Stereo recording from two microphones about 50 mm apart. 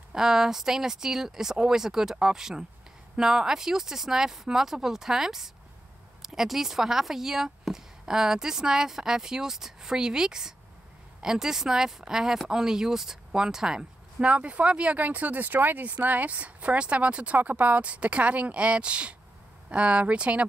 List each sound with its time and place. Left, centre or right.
0.1 s a woman's voice: centre; by 20.4 s right